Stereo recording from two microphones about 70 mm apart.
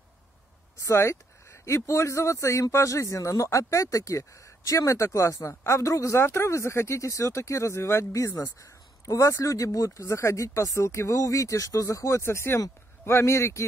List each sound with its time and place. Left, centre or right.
0.7 s speech: left